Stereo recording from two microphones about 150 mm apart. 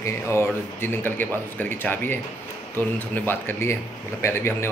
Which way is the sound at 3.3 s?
15° left (ahead or behind).